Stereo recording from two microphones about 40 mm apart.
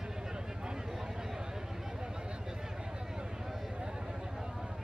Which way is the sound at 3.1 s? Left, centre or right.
Centre.